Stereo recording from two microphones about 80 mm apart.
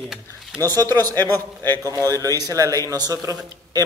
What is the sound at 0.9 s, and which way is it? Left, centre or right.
A man's voice, right.